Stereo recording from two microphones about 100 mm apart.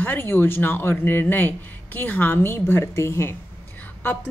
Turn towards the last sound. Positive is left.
turn(degrees=25)  # may be behind; listen again after turning